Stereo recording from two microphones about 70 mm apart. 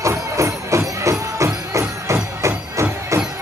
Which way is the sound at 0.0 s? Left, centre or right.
Right.